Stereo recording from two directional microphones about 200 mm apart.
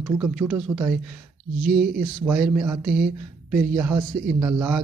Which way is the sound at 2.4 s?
5° right (ahead or behind).